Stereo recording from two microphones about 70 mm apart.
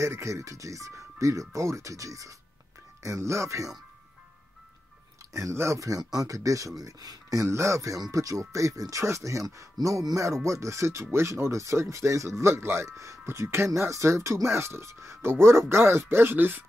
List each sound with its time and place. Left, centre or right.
0.0 s speech: right
5.3 s speech: right
9.8 s speech: right
10.1 s speech: right